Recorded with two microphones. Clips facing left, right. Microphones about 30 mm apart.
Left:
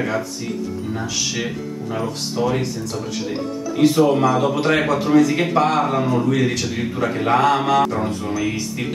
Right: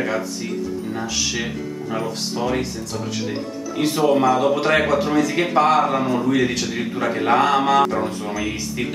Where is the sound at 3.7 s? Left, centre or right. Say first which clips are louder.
Left 2 dB; centre.